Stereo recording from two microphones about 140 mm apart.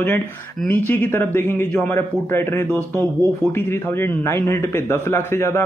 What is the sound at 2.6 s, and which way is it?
Speech, 20° right (ahead or behind).